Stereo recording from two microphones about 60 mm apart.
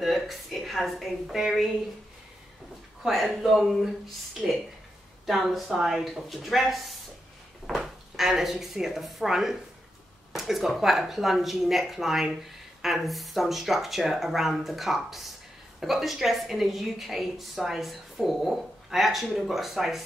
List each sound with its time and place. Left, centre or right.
0.0 s a woman's voice: centre
3.0 s a woman's voice: centre
5.2 s a woman's voice: centre